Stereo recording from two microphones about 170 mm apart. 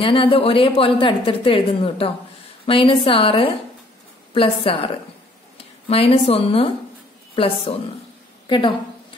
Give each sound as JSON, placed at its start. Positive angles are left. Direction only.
{"t": 0.0, "sound": "a woman's voice", "side_deg": 30}